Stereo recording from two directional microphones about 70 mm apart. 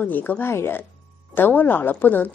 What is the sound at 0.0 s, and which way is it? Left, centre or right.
A woman's voice, left.